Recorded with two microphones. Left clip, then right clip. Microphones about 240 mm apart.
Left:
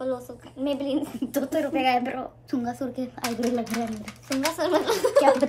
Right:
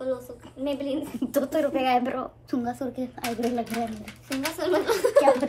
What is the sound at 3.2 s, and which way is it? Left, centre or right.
Speech, left.